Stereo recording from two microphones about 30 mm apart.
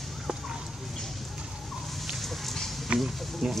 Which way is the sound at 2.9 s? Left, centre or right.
Right.